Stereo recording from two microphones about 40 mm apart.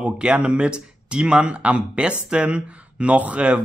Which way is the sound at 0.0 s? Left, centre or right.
Right.